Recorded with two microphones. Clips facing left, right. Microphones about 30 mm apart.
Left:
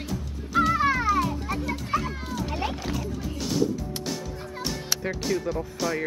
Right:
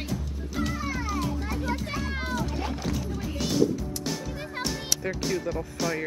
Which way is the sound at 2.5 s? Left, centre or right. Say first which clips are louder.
Left 3 dB; left.